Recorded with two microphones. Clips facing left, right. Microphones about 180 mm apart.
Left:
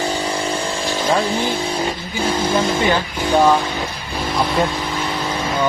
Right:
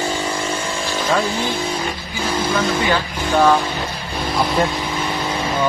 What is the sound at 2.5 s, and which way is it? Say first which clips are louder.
Speech: left 1 dB; 25° left (ahead or behind).